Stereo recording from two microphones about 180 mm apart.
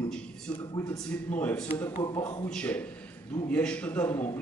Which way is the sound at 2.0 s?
20° left (ahead or behind).